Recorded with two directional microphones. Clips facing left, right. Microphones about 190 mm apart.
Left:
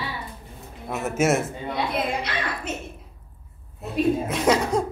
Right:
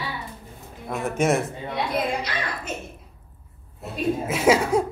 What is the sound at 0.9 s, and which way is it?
Speech, 5° left (ahead or behind).